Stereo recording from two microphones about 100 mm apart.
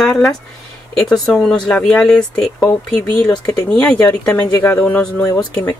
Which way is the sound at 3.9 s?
30° left (ahead or behind).